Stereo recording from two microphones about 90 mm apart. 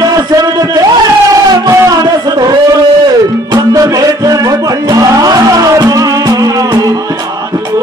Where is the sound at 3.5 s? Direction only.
45° right (ahead or behind).